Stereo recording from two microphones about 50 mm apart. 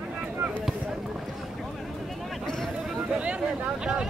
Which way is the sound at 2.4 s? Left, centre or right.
Centre.